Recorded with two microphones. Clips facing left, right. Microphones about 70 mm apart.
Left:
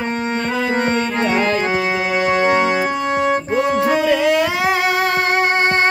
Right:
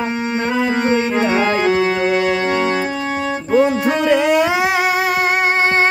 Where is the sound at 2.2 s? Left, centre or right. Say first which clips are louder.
Left 2 dB; centre.